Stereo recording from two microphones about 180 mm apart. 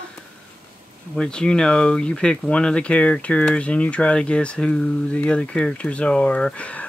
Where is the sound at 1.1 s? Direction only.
5° left (ahead or behind).